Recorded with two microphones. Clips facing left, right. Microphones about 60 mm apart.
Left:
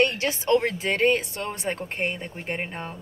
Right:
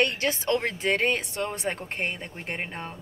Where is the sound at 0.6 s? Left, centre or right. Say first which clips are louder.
Left 2 dB; centre.